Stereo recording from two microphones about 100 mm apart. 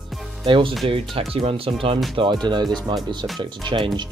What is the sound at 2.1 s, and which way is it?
Speech, 50° right (ahead or behind).